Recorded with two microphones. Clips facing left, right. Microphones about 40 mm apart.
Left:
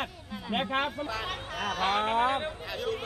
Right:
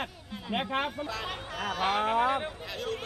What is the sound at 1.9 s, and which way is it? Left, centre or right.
Speech, left.